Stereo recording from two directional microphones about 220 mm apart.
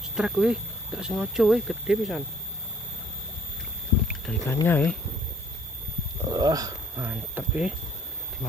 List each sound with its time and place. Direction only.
0.1 s speech: 5° right (ahead or behind)
4.5 s speech: 10° left (ahead or behind)
6.2 s speech: 15° right (ahead or behind)